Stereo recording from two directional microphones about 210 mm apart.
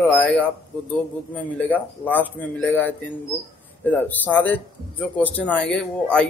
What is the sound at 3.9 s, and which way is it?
A man's voice, 10° left (ahead or behind).